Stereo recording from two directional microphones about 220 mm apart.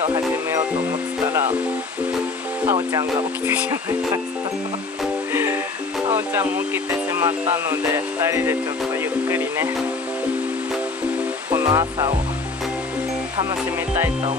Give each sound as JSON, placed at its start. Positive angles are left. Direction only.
{"t": 2.6, "sound": "speech", "side_deg": -15}
{"t": 5.3, "sound": "music", "side_deg": -10}
{"t": 6.0, "sound": "speech", "side_deg": -10}
{"t": 11.5, "sound": "speech", "side_deg": -15}